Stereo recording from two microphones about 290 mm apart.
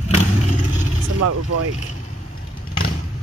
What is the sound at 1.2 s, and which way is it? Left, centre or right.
Speech, right.